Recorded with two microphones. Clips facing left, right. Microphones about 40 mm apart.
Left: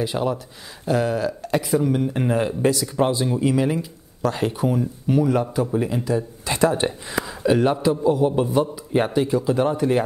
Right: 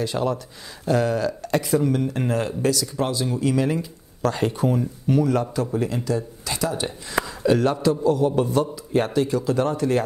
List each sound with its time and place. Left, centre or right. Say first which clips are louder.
0.0 s speech: left 1 dB; centre
6.5 s speech: left 6 dB; left
7.2 s speech: left 2 dB; centre